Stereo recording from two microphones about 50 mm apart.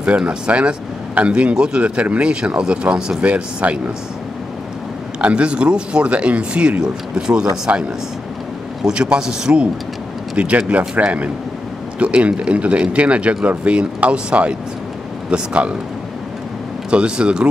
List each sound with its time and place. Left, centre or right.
0.0 s speech: right
5.2 s speech: right
8.8 s speech: centre
10.3 s speech: right
16.9 s speech: right